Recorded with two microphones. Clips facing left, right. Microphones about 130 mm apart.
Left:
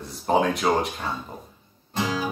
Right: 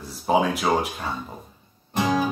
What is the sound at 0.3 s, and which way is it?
Speech, 5° right (ahead or behind).